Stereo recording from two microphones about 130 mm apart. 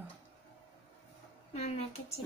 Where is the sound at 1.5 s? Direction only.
55° left (ahead or behind).